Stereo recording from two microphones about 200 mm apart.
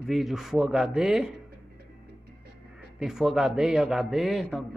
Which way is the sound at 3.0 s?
Centre (ahead or behind).